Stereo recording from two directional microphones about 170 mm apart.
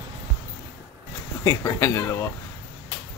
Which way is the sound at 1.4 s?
20° left (ahead or behind).